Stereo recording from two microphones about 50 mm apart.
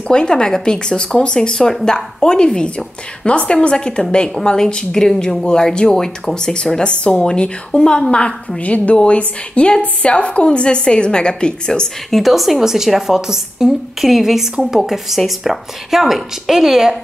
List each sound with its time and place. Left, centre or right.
0.1 s a woman's voice: centre
8.5 s a woman's voice: left
12.1 s a woman's voice: centre